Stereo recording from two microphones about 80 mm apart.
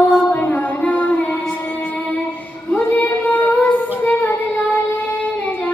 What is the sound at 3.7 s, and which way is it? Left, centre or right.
Female singing, left.